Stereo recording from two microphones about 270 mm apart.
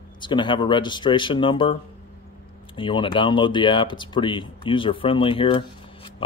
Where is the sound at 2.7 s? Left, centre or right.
Centre.